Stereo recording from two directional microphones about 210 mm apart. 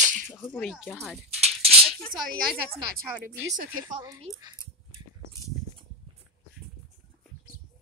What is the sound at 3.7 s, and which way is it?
Speech, 15° right (ahead or behind).